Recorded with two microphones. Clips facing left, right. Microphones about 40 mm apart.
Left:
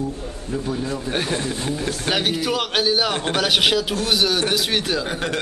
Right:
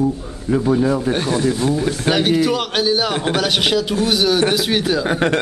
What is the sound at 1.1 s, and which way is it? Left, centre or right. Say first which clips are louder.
Speech: right 6 dB; centre.